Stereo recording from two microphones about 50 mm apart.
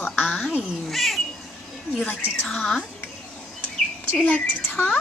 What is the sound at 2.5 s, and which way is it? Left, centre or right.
Speech, centre.